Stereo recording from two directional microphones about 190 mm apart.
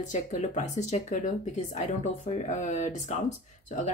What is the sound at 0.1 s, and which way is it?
Speech, 40° left (ahead or behind).